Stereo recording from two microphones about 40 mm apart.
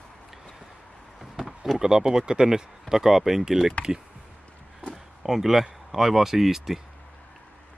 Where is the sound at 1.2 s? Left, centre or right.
Centre.